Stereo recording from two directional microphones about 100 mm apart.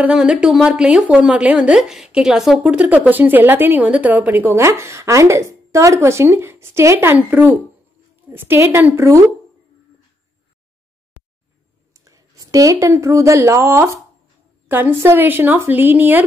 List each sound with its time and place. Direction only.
0.0 s a woman's voice: 10° right (ahead or behind); by 9.2 s 30° right (ahead or behind)
11.9 s a woman's voice: 35° right (ahead or behind); by 16.3 s 20° right (ahead or behind)